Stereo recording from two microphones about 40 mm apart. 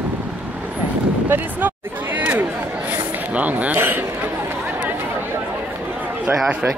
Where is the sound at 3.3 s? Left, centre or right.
Right.